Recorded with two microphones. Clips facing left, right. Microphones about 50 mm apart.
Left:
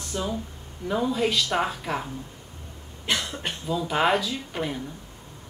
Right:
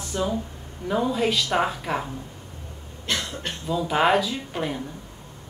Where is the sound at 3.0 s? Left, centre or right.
Centre.